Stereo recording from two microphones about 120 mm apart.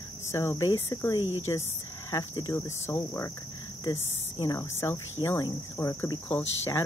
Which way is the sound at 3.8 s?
35° left (ahead or behind).